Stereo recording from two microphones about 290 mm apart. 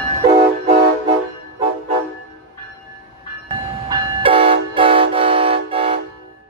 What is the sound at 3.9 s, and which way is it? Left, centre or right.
Train, centre.